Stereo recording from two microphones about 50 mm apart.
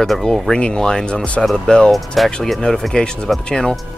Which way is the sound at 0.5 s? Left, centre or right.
Centre.